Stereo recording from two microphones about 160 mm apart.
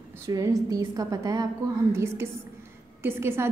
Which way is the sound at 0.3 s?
20° right (ahead or behind).